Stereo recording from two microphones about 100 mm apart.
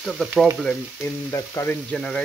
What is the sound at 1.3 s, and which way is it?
Frying, 30° left (ahead or behind).